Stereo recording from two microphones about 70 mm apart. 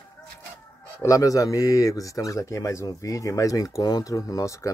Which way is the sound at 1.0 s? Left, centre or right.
Left.